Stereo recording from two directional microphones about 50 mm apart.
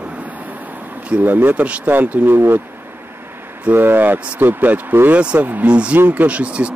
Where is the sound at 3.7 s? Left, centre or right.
Right.